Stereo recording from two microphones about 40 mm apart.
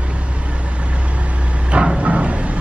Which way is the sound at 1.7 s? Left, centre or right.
Right.